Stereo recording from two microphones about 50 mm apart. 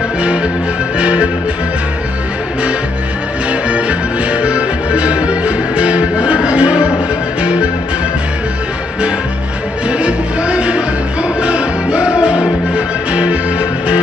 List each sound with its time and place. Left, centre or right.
0.9 s music: right
3.6 s music: right
9.8 s music: right